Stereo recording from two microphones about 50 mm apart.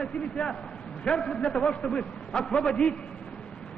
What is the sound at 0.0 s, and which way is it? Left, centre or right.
A man's voice, centre.